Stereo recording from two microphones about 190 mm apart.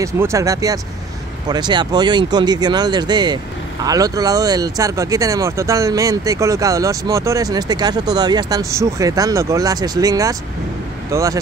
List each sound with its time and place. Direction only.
0.0 s speech: 15° right (ahead or behind)